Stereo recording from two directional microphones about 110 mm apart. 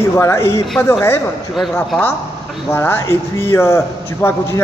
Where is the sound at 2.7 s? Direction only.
25° left (ahead or behind).